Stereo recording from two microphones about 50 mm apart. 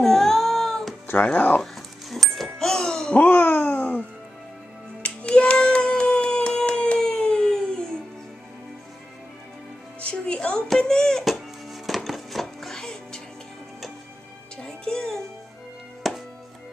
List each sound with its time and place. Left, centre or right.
0.0 s cat: centre
1.0 s speech: left
1.6 s dog: centre
2.6 s clang: centre
3.2 s music: left
5.0 s child singing: left
7.0 s a sound: centre
9.9 s music: left
11.2 s music: centre
14.6 s music: centre
16.0 s music: centre